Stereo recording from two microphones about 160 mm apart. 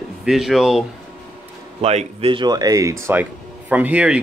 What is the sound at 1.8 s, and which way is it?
Speech, 40° right (ahead or behind).